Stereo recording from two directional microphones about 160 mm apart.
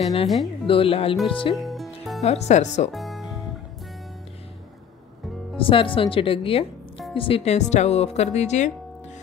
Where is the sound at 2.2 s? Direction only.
45° left (ahead or behind).